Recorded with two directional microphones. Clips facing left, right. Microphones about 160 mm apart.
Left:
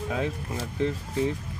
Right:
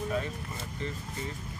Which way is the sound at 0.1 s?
90° left.